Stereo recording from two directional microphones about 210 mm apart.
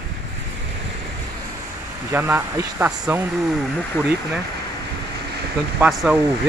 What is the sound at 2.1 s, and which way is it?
Speech, 10° right (ahead or behind).